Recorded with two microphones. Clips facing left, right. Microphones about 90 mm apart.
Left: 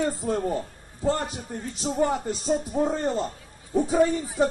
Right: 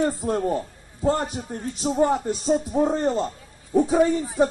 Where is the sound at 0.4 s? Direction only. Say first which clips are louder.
Right 3 dB; 10° right (ahead or behind).